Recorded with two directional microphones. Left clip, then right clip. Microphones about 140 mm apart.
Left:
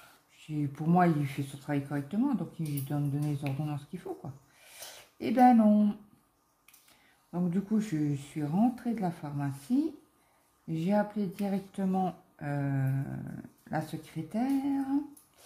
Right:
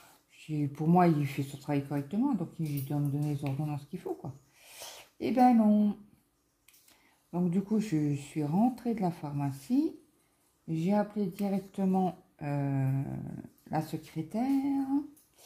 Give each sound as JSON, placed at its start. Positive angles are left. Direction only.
{"t": 0.4, "sound": "speech", "side_deg": -30}
{"t": 2.9, "sound": "speech", "side_deg": -15}
{"t": 3.6, "sound": "a sound", "side_deg": -25}
{"t": 5.3, "sound": "speech", "side_deg": -15}
{"t": 7.2, "sound": "speech", "side_deg": -25}
{"t": 10.7, "sound": "speech", "side_deg": -15}